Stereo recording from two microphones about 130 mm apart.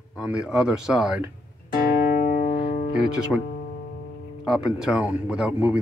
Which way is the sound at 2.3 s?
90° left.